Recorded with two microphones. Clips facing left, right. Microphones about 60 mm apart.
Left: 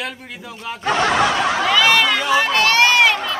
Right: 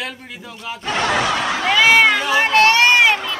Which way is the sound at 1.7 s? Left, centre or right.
Right.